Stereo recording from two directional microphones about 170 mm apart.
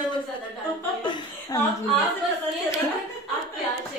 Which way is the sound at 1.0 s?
25° left (ahead or behind).